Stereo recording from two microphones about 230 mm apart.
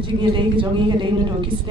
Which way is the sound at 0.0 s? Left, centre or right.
Right.